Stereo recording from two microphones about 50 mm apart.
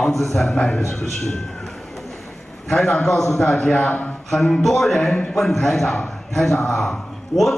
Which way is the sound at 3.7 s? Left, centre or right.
Left.